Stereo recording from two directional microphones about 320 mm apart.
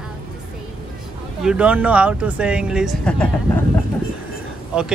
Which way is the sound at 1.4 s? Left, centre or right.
Centre.